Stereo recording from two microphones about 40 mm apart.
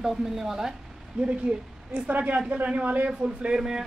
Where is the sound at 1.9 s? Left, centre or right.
Right.